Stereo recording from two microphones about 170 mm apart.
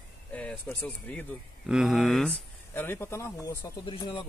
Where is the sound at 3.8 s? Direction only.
30° left (ahead or behind).